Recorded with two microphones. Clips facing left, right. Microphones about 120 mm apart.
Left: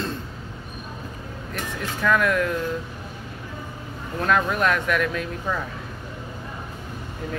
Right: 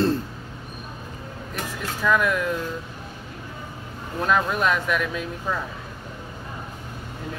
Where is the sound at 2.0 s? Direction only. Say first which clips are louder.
Even; 10° right (ahead or behind).